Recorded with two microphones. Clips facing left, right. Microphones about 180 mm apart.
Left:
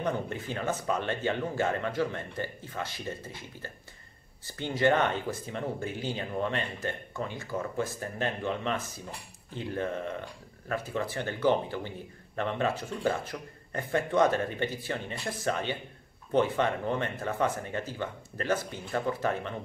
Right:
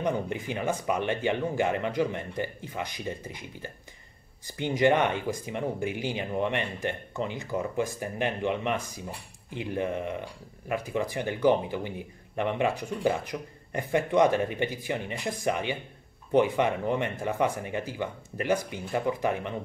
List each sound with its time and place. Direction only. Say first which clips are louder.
0.0 s speech: right 3 dB; 15° right (ahead or behind)